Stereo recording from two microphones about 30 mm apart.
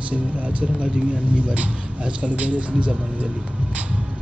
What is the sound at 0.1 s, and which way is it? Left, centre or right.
Speech, right.